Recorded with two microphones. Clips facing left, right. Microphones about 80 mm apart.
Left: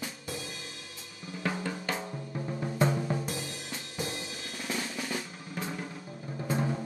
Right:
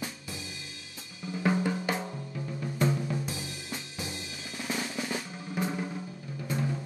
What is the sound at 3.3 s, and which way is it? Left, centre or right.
Drum kit, left.